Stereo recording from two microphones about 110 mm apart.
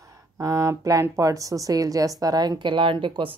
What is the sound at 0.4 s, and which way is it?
A woman's voice, 30° right (ahead or behind).